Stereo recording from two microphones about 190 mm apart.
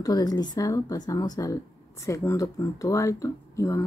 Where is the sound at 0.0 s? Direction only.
20° left (ahead or behind).